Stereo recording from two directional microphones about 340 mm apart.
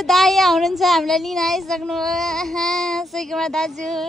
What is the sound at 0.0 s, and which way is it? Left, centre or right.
Speech, centre.